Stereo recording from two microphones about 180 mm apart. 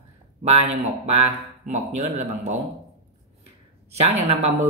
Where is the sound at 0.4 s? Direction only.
35° right (ahead or behind).